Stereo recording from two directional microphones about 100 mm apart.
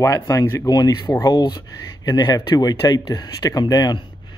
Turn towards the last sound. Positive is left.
turn(degrees=40)  # may be behind; listen again after turning